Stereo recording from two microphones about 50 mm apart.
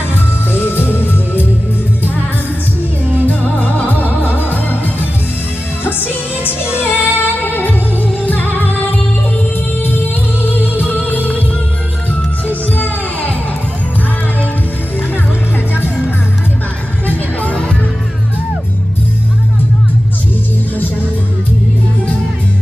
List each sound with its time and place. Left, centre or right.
0.5 s music: left
3.3 s music: left
6.4 s music: right
6.8 s music: left
9.8 s music: left
12.4 s music: left
17.1 s music: left